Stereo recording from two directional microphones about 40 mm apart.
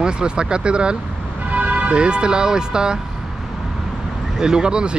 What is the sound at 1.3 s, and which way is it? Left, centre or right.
Speech, right.